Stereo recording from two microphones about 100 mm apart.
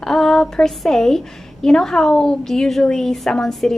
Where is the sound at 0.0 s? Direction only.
5° left (ahead or behind).